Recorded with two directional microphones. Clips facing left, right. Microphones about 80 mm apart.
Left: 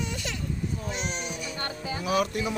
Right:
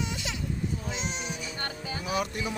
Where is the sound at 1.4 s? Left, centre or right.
Centre.